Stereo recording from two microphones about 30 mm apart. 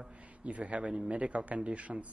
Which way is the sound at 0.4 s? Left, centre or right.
Right.